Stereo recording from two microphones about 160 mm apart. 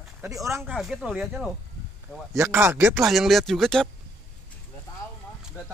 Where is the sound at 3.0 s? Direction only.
Centre (ahead or behind).